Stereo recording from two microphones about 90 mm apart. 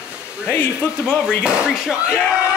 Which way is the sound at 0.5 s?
20° left (ahead or behind).